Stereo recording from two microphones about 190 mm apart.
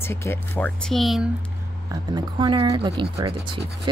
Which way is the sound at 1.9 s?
25° right (ahead or behind).